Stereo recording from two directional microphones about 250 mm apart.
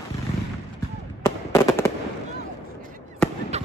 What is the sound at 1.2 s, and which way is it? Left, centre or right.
Fireworks, centre.